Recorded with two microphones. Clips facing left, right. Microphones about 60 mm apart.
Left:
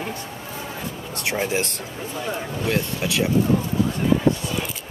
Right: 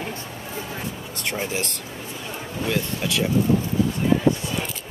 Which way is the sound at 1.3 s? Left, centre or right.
Centre.